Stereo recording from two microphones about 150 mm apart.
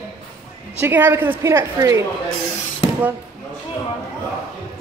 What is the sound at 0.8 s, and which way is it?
A woman's voice, 15° right (ahead or behind).